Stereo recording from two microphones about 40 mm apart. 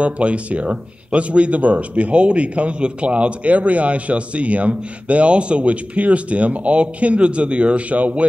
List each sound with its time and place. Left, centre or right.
0.0 s speech: right